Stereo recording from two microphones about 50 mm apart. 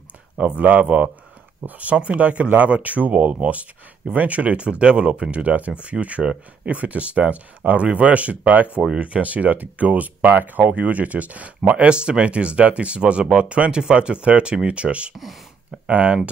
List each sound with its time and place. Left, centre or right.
0.4 s speech: right